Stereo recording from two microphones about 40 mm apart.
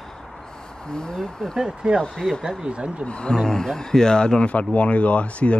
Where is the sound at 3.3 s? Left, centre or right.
Centre.